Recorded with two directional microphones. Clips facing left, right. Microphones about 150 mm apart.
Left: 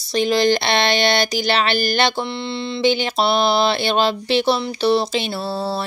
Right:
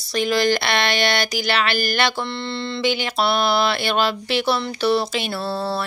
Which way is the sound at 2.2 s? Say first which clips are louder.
Left 2 dB; 15° left (ahead or behind).